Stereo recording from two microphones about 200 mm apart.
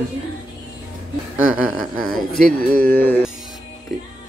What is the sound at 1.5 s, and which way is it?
Speech, centre (ahead or behind).